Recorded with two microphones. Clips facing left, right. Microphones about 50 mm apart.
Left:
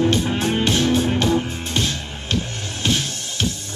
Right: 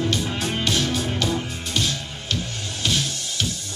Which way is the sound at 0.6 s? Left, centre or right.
Left.